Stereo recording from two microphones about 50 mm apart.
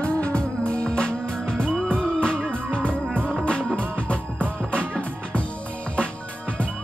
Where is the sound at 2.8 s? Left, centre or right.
Right.